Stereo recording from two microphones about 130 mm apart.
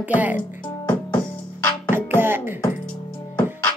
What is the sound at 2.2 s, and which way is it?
Beatboxing, 15° right (ahead or behind).